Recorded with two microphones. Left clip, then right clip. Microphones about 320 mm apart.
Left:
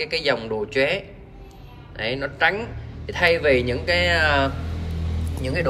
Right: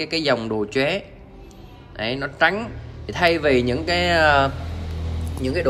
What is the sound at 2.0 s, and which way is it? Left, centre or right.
Speech, centre.